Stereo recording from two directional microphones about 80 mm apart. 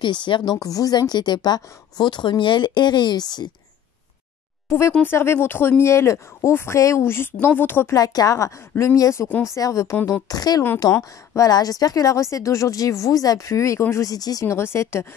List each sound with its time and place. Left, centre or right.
0.0 s speech: left
0.6 s a woman's voice: left
4.6 s a woman's voice: left
7.9 s speech: left
10.2 s speech: left
14.0 s speech: left
14.5 s speech: left